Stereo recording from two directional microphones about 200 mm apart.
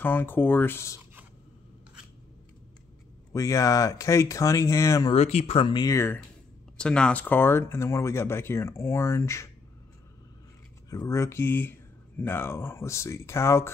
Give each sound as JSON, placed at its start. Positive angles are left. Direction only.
{"t": 0.0, "sound": "speech", "side_deg": 10}
{"t": 3.3, "sound": "speech", "side_deg": 15}
{"t": 5.1, "sound": "speech", "side_deg": 35}
{"t": 10.9, "sound": "speech", "side_deg": 15}